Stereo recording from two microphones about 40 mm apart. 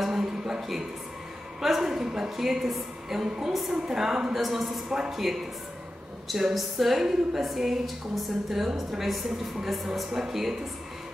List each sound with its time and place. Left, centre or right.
0.0 s a sound: centre
1.6 s a woman's voice: centre
4.8 s a woman's voice: centre
5.1 s a woman's voice: centre